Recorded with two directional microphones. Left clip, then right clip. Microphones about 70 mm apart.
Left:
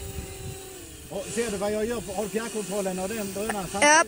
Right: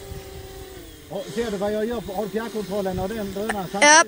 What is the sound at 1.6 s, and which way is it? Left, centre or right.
Speech, centre.